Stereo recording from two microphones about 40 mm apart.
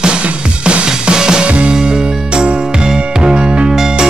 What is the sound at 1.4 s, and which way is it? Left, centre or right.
Music, right.